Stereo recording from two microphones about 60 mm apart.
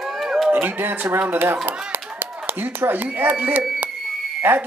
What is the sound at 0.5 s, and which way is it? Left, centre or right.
Speech, right.